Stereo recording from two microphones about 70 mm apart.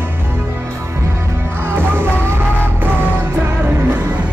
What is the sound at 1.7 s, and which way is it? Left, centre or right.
Music, right.